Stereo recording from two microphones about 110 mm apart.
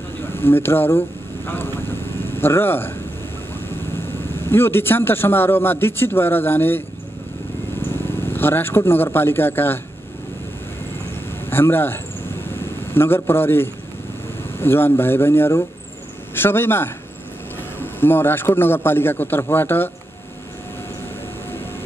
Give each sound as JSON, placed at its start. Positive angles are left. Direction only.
{"t": 0.2, "sound": "vehicle", "side_deg": 20}
{"t": 4.4, "sound": "a man's voice", "side_deg": 20}
{"t": 8.3, "sound": "a man's voice", "side_deg": 20}
{"t": 11.4, "sound": "a man's voice", "side_deg": 20}